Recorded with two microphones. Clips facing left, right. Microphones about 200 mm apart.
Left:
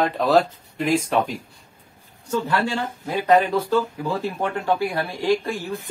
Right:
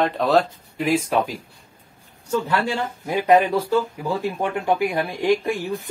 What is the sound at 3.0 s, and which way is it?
A woman's voice, 15° right (ahead or behind).